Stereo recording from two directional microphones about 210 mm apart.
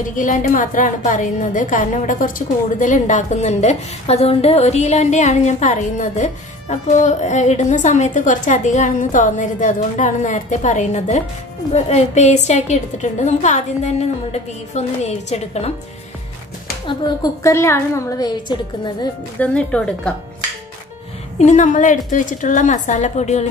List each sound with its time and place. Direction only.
0.1 s a woman's voice: 40° left (ahead or behind)
16.8 s a woman's voice: 15° left (ahead or behind)
19.4 s a woman's voice: 5° left (ahead or behind)
21.4 s a woman's voice: 35° left (ahead or behind)